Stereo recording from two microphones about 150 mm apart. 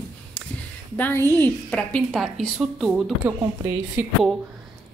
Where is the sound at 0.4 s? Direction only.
10° left (ahead or behind).